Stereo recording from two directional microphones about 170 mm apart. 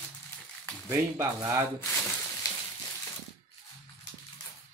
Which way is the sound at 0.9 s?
15° right (ahead or behind).